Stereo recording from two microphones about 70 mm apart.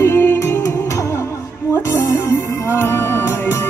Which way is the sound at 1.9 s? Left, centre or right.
Left.